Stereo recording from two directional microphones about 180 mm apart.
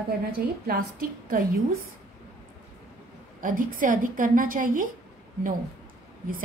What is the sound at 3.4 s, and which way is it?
A woman's voice, 50° right (ahead or behind).